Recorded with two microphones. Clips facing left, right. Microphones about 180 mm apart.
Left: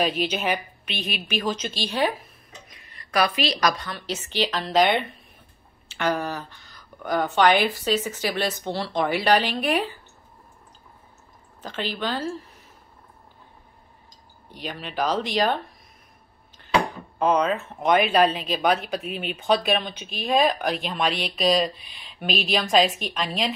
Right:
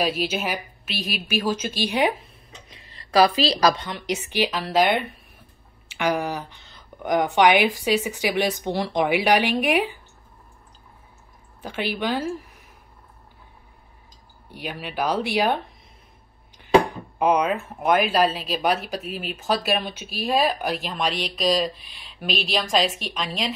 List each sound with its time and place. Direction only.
0.2 s a woman's voice: 5° right (ahead or behind)
2.7 s a woman's voice: 30° right (ahead or behind)
3.8 s a woman's voice: 15° right (ahead or behind)
11.6 s a woman's voice: 10° right (ahead or behind)
14.5 s a woman's voice: 10° right (ahead or behind)
17.2 s a woman's voice: 10° right (ahead or behind)